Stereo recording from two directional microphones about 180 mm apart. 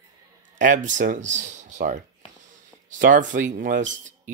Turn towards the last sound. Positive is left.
turn(degrees=-50)  # may be behind; listen again after turning